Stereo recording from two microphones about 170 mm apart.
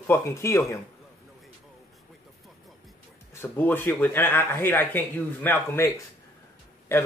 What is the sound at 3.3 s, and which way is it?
Speech, 10° left (ahead or behind).